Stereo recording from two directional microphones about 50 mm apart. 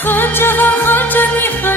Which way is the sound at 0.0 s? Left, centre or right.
Left.